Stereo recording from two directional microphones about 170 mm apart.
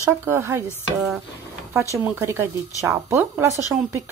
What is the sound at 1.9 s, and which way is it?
Speech, 15° right (ahead or behind).